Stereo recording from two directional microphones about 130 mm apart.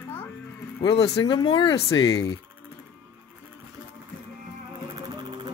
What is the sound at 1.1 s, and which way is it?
Speech, 35° left (ahead or behind).